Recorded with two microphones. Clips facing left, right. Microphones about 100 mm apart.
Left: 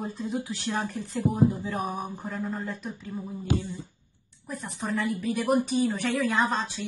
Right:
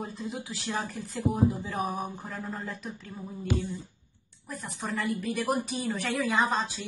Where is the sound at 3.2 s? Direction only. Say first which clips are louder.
Left 1 dB; 15° left (ahead or behind).